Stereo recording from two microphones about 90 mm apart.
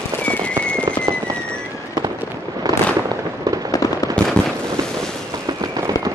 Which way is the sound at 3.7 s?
40° left (ahead or behind).